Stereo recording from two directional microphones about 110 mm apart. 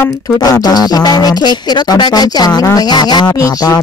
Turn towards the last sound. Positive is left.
turn(degrees=35)  # may be behind; listen again after turning